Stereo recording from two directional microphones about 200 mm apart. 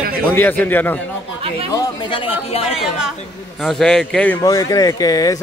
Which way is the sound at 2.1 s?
30° left (ahead or behind).